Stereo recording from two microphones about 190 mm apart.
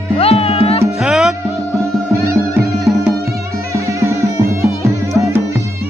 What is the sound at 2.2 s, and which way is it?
Music, 15° right (ahead or behind).